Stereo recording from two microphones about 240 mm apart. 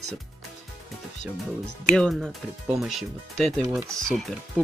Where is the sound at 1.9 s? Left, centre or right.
Centre.